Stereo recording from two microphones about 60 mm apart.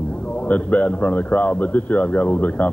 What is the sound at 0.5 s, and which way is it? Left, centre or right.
A man's voice, left.